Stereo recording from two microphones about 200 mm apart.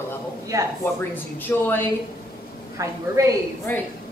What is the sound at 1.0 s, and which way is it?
Speech, 10° left (ahead or behind).